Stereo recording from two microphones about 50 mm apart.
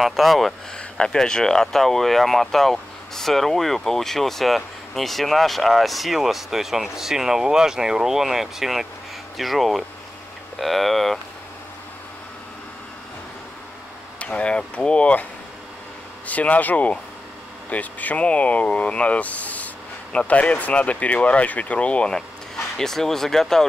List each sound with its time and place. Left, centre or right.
0.0 s speech: centre
0.7 s speech: centre
14.2 s speech: left
16.3 s speech: left
22.8 s speech: centre